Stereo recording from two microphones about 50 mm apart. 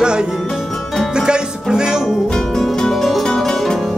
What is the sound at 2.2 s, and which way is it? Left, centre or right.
Music, centre.